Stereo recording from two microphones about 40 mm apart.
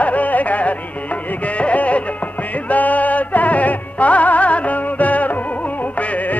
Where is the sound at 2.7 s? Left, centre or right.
Left.